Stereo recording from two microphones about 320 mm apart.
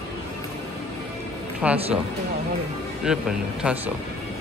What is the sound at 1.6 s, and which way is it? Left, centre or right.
Speech, centre.